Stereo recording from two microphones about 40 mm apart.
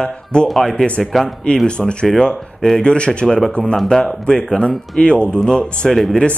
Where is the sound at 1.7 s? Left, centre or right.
Left.